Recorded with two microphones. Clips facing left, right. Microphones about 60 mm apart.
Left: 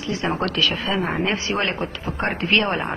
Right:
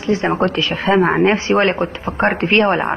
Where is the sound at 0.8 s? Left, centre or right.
Right.